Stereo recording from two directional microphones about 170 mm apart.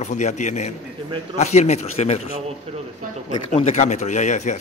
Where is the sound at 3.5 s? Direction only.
40° left (ahead or behind).